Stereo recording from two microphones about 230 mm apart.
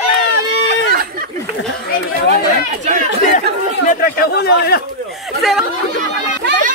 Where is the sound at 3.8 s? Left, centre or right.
Left.